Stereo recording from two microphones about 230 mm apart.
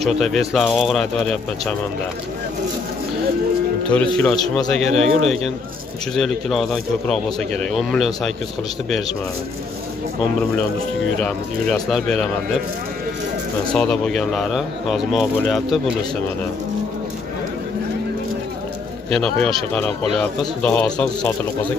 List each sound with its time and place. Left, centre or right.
0.0 s speech: centre
4.2 s speech: centre
11.1 s speech: centre
13.7 s speech: centre
19.0 s speech: centre